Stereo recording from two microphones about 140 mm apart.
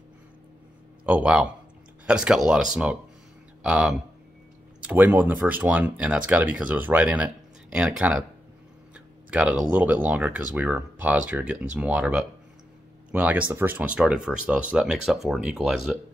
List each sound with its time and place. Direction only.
1.0 s speech: 10° right (ahead or behind)